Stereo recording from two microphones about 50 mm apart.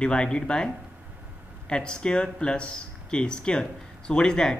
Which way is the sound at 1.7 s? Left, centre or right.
Centre.